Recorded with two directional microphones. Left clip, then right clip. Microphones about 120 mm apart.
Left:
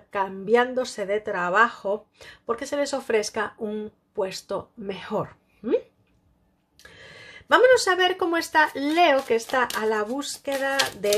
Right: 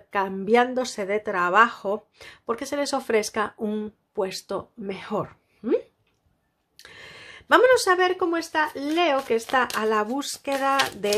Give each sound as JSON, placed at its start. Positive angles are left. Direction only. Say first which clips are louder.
{"t": 0.1, "sound": "a woman's voice", "louder": "right 1 dB", "side_deg": -30}
{"t": 6.8, "sound": "a sound", "louder": "right 2 dB", "side_deg": -35}
{"t": 7.9, "sound": "speech", "louder": "even", "side_deg": -10}
{"t": 9.3, "sound": "a woman's voice", "louder": "even", "side_deg": -20}